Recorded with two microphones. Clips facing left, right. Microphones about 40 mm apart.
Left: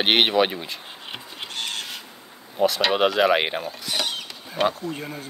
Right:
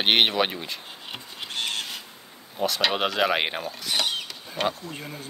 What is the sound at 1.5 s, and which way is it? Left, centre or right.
Cat, centre.